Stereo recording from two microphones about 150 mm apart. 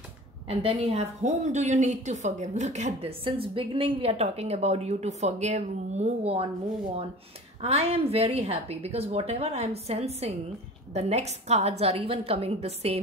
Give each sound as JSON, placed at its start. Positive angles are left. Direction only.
{"t": 0.5, "sound": "a woman's voice", "side_deg": -40}
{"t": 7.6, "sound": "a woman's voice", "side_deg": -45}